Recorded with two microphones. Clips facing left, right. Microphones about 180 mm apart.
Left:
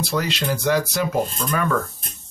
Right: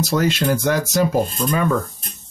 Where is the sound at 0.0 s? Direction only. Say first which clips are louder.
Right 5 dB; 45° right (ahead or behind).